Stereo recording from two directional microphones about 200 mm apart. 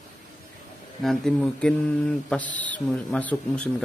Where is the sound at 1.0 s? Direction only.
Centre (ahead or behind).